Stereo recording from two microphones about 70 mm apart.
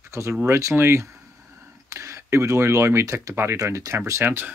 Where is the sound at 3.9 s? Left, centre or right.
Right.